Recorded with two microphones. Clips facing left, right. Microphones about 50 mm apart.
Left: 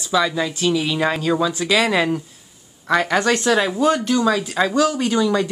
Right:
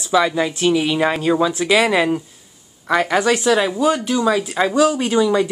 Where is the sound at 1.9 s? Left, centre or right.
Centre.